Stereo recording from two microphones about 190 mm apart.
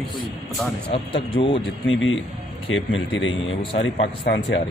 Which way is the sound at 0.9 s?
30° left (ahead or behind).